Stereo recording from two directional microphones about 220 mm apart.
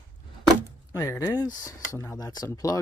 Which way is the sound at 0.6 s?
15° left (ahead or behind).